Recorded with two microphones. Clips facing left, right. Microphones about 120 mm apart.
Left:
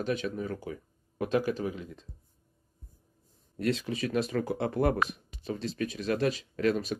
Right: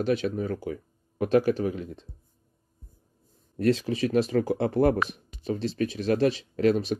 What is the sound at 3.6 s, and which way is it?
Speech, 35° right (ahead or behind).